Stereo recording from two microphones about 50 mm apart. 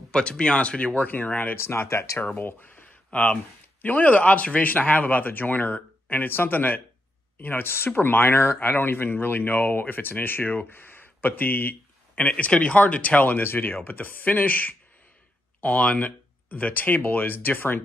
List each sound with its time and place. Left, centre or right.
0.1 s speech: centre; by 1.6 s left
1.6 s speech: left
2.1 s speech: left
12.2 s speech: left